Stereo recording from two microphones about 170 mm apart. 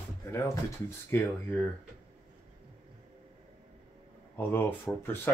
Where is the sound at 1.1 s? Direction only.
10° left (ahead or behind).